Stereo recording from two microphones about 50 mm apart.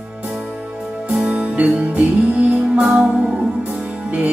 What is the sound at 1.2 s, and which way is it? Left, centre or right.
Music, right.